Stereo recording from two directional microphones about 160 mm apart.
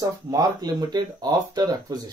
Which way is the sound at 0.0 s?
25° right (ahead or behind).